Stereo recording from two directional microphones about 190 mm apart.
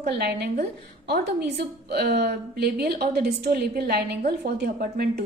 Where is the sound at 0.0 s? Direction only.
55° right (ahead or behind).